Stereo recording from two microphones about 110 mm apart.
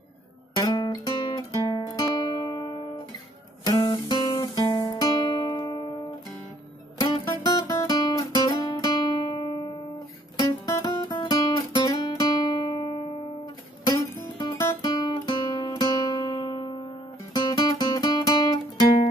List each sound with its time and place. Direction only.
0.6 s guitar: 40° left (ahead or behind)
1.5 s music: 40° left (ahead or behind)
3.6 s guitar: 35° left (ahead or behind)
7.0 s music: 35° left (ahead or behind)
11.1 s guitar: 35° left (ahead or behind)
14.8 s guitar: 40° left (ahead or behind)
17.3 s music: 35° left (ahead or behind)